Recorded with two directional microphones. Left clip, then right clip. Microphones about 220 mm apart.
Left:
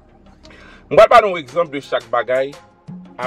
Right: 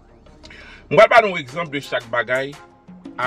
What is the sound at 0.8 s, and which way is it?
A man's voice, 15° right (ahead or behind).